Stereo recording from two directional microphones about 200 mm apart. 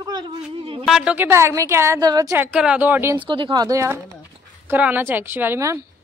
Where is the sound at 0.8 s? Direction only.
5° right (ahead or behind).